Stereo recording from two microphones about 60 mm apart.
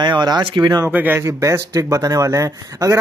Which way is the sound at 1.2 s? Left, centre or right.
Right.